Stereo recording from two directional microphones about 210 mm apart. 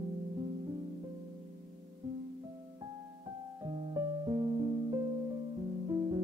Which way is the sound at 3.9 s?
20° right (ahead or behind).